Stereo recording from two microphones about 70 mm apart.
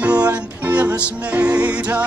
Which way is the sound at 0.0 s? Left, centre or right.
Centre.